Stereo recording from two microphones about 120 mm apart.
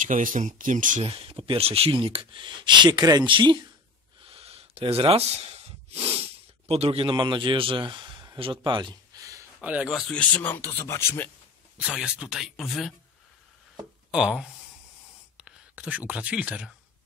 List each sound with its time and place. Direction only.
0.0 s speech: 90° right
1.0 s speech: 50° right (ahead or behind)
4.3 s a sound: 55° right (ahead or behind)
6.7 s a man's voice: 55° right (ahead or behind); by 9.2 s 40° right (ahead or behind)
9.6 s speech: 10° right (ahead or behind)
10.3 s speech: 15° left (ahead or behind)
11.8 s speech: 5° right (ahead or behind)
14.1 s speech: 5° right (ahead or behind)